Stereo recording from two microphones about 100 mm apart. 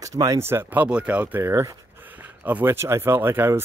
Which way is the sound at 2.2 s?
15° right (ahead or behind).